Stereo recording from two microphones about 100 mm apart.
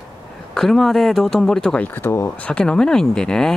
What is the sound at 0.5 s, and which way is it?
Speech, 5° left (ahead or behind).